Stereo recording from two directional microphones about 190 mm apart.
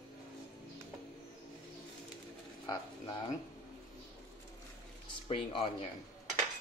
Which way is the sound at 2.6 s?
20° left (ahead or behind).